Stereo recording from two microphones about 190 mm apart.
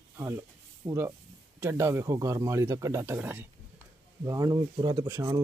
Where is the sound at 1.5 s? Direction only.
15° right (ahead or behind).